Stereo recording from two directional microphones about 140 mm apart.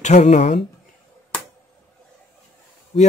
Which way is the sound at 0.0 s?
55° left (ahead or behind).